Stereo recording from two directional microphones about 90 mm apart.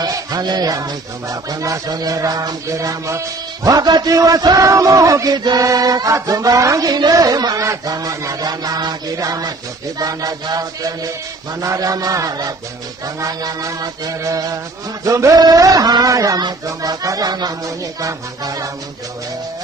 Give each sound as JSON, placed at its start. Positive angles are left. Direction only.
{"t": 0.0, "sound": "music", "side_deg": -45}